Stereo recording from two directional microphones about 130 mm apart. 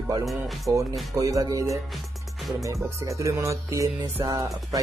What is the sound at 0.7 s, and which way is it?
Music, 25° right (ahead or behind).